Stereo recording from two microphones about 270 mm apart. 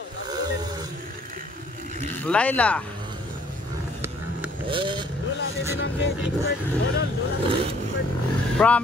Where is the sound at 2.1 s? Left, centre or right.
Centre.